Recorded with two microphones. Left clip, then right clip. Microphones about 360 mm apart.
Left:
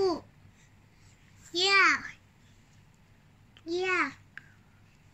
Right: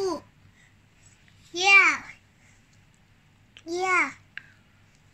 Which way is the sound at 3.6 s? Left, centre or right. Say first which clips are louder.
Right 5 dB; centre.